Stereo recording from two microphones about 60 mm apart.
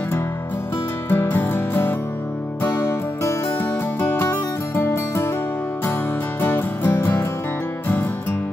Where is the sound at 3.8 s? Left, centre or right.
Left.